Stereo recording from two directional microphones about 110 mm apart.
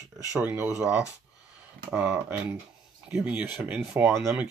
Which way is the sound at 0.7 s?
10° right (ahead or behind).